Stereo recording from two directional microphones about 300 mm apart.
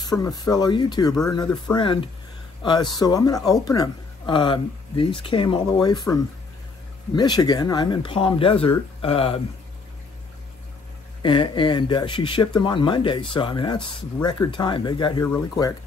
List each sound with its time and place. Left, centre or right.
0.0 s speech: centre
7.2 s speech: centre
11.2 s speech: centre